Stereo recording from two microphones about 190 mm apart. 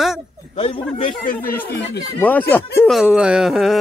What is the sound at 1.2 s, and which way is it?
Speech, 45° left (ahead or behind).